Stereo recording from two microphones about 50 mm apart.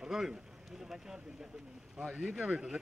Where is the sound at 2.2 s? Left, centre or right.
Centre.